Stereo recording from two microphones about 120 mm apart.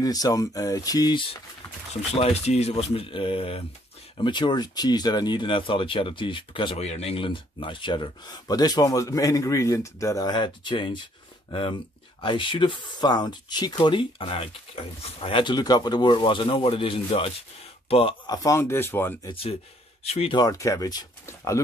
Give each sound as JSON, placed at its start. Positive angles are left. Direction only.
{"t": 0.0, "sound": "speech", "side_deg": 30}
{"t": 2.1, "sound": "speech", "side_deg": 60}
{"t": 4.2, "sound": "speech", "side_deg": 40}
{"t": 6.8, "sound": "speech", "side_deg": 60}
{"t": 12.2, "sound": "speech", "side_deg": 40}
{"t": 18.2, "sound": "speech", "side_deg": 30}
{"t": 19.2, "sound": "speech", "side_deg": 50}
{"t": 20.3, "sound": "speech", "side_deg": 30}